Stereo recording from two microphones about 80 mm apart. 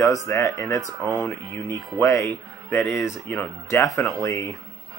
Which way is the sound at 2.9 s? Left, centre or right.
Left.